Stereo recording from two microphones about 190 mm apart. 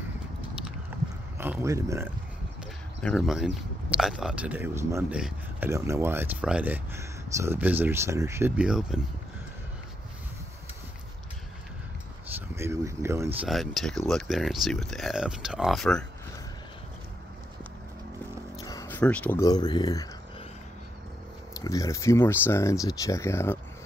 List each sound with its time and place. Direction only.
0.9 s a sound: 10° right (ahead or behind)
1.4 s speech: 15° right (ahead or behind)
3.0 s speech: centre (ahead or behind)
12.4 s speech: 15° right (ahead or behind); by 16.1 s 5° left (ahead or behind)
18.6 s a sound: 15° left (ahead or behind)
19.4 s speech: 20° left (ahead or behind)
21.5 s speech: 15° left (ahead or behind)